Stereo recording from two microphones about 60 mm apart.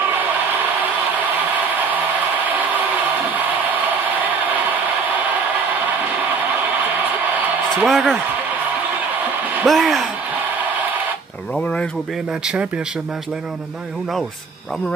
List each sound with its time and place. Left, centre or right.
7.8 s speech: centre
9.7 s speech: centre
11.5 s a sound: centre